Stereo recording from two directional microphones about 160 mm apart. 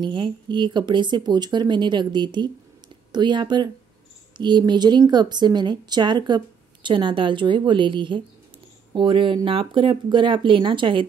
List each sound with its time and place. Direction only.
0.0 s a woman's voice: 30° right (ahead or behind)